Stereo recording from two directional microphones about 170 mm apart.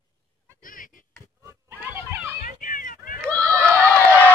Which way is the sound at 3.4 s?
20° right (ahead or behind).